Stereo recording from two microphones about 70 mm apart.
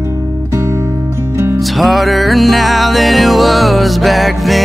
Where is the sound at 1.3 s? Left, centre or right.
Right.